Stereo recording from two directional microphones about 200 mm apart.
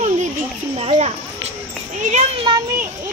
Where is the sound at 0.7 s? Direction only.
30° right (ahead or behind).